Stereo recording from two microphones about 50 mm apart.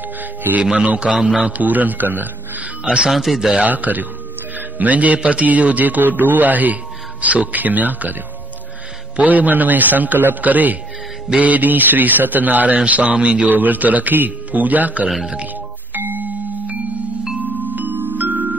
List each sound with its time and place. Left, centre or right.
0.2 s speech: right
0.8 s a man's voice: right
1.5 s speech: right
2.6 s a man's voice: right
3.1 s speech: centre
3.3 s a man's voice: centre
3.6 s speech: right
13.6 s speech: right
15.0 s a man's voice: centre
15.9 s music: right
17.6 s music: right